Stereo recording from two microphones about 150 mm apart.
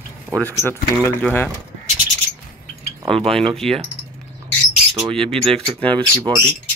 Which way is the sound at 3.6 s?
5° left (ahead or behind).